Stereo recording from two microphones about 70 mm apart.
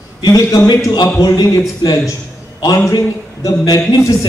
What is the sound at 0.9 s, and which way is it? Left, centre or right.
Speech, left.